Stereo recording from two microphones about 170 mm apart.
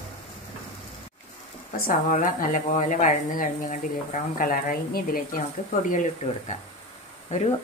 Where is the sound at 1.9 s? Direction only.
50° left (ahead or behind).